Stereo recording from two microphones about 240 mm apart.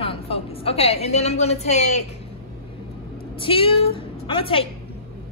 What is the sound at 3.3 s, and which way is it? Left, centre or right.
A woman's voice, left.